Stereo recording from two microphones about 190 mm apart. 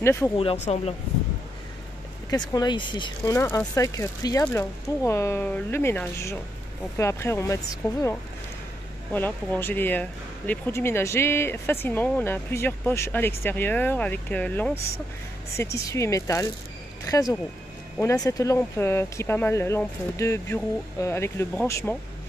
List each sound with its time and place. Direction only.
0.0 s speech: 15° left (ahead or behind)
0.4 s speech: 30° left (ahead or behind)
2.3 s speech: 20° left (ahead or behind)